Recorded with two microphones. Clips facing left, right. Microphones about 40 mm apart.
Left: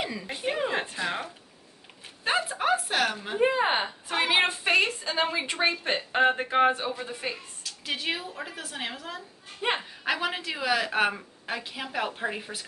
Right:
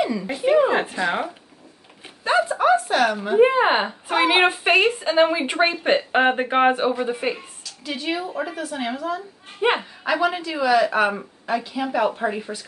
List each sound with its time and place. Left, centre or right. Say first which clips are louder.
0.1 s speech: right 9 dB; centre
0.6 s a sound: right 11 dB; right
1.0 s a woman's voice: right 8 dB; right
2.6 s a sound: right 7 dB; centre
3.3 s a woman's voice: right 8 dB; right
7.6 s speech: right 3 dB; centre
9.6 s speech: right 8 dB; right
10.2 s speech: right 8 dB; centre